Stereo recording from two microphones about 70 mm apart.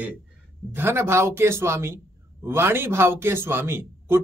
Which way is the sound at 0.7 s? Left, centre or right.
Right.